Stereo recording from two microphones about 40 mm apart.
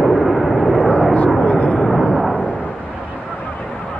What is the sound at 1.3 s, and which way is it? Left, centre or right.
Vehicle, left.